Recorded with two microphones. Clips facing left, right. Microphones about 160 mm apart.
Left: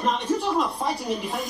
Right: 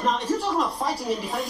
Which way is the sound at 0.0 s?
Centre (ahead or behind).